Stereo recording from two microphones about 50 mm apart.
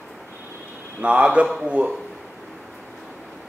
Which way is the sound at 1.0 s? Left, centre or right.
Right.